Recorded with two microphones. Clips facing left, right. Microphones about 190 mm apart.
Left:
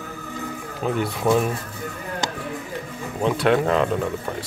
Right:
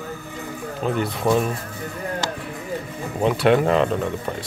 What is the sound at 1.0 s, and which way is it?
Speech, centre (ahead or behind).